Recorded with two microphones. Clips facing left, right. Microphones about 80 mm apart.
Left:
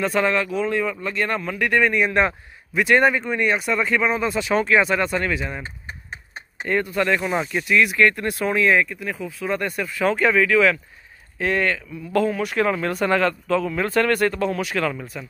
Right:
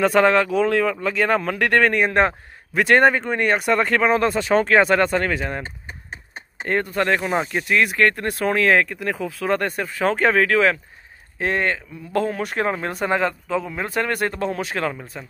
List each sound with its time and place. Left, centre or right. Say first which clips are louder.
0.0 s speech: right 5 dB; right
4.3 s speech: right 2 dB; right
6.7 s speech: even; right
9.6 s speech: right 1 dB; right
11.3 s speech: even; right